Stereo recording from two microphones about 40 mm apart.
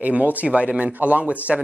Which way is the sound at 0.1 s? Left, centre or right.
Right.